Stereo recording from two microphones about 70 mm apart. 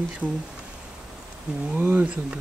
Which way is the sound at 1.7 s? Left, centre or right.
Right.